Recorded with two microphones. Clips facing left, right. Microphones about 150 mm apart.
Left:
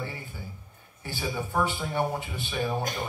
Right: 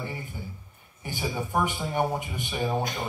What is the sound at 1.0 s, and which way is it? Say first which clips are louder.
A man's voice: right 1 dB; 15° right (ahead or behind).